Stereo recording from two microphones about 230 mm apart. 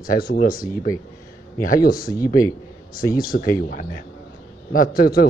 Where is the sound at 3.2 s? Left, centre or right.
Left.